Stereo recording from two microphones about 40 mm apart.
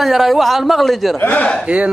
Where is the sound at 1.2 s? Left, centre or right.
Left.